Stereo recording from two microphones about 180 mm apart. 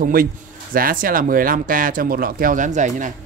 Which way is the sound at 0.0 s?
50° right (ahead or behind).